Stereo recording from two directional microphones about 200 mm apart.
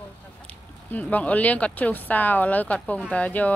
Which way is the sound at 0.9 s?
10° left (ahead or behind).